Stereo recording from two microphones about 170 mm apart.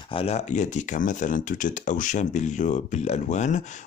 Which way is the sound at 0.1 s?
35° left (ahead or behind).